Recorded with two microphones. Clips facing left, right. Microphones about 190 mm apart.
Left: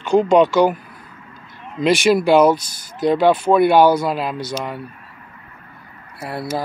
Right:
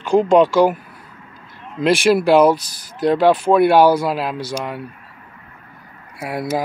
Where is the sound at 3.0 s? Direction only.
Centre (ahead or behind).